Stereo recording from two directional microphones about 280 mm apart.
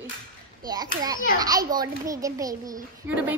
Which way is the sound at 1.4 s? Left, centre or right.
Centre.